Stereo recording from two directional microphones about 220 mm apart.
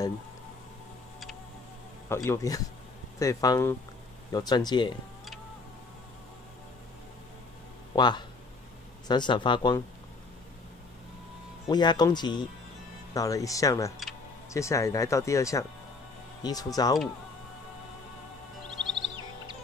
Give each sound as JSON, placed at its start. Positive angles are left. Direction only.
{"t": 2.0, "sound": "speech", "side_deg": 10}
{"t": 7.9, "sound": "speech", "side_deg": 20}
{"t": 11.6, "sound": "speech", "side_deg": 20}